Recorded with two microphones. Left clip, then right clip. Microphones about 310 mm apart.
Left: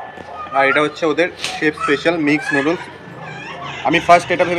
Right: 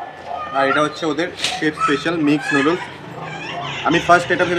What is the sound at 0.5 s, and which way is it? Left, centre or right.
Speech, centre.